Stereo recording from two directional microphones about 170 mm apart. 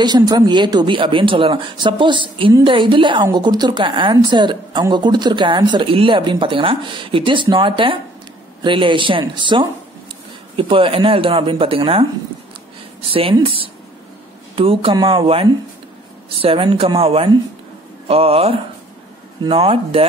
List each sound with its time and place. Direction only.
0.0 s speech: 25° right (ahead or behind)
13.1 s speech: 30° right (ahead or behind)